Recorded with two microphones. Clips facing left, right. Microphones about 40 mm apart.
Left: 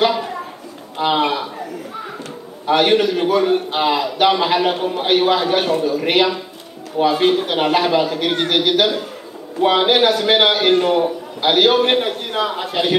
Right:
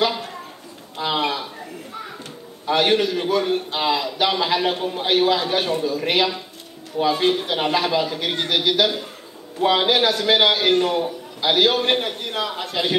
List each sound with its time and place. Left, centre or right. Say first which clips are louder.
0.9 s a man's voice: left 5 dB; left
2.6 s a man's voice: left 4 dB; left
11.9 s a man's voice: left 4 dB; centre